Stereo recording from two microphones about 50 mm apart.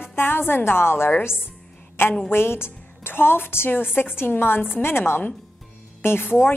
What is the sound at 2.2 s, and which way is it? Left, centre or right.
A woman's voice, left.